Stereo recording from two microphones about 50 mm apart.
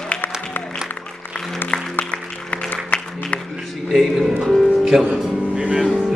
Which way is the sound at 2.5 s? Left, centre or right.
Left.